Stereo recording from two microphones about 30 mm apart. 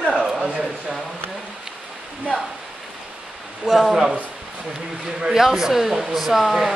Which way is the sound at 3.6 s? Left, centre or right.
Centre.